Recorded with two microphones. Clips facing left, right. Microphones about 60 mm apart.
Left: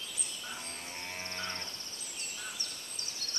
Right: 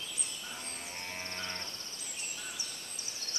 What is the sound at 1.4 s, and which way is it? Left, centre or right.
Moo, left.